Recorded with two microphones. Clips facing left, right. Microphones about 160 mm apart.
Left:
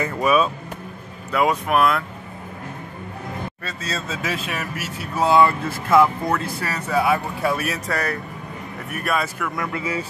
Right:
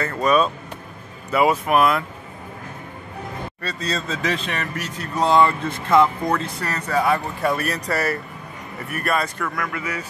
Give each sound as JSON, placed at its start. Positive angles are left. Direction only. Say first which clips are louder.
{"t": 0.0, "sound": "speech", "louder": "even", "side_deg": 10}
{"t": 3.6, "sound": "speech", "louder": "right 6 dB", "side_deg": 5}
{"t": 9.6, "sound": "speech", "louder": "left 5 dB", "side_deg": 25}